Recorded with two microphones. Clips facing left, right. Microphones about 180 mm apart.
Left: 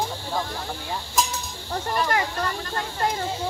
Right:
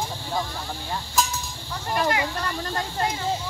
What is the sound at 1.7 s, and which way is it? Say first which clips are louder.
Speech: even; 45° left (ahead or behind).